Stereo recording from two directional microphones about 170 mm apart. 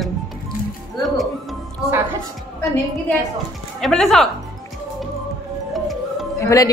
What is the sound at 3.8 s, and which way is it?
Speech, 5° left (ahead or behind).